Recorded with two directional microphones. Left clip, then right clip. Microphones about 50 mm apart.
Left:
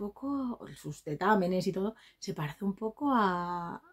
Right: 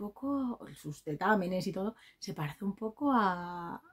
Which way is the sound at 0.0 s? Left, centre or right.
Right.